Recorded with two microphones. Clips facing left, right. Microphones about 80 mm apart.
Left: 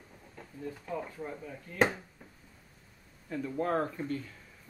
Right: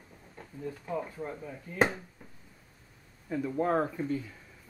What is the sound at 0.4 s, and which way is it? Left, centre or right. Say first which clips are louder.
A man's voice: right 2 dB; centre.